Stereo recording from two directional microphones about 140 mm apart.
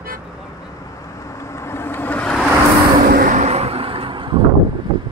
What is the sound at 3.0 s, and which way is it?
Vehicle, 90° right.